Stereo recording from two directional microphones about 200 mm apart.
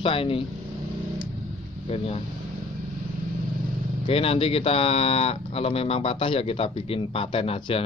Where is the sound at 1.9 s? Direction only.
30° left (ahead or behind).